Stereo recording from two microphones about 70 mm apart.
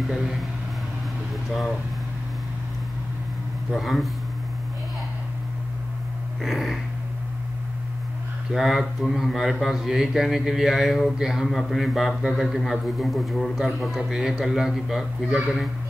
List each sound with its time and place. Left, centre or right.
0.1 s speech: centre
3.7 s speech: centre
6.4 s speech: centre
8.5 s speech: centre